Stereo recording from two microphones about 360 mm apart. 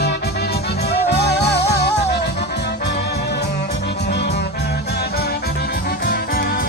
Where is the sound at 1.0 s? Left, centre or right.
Left.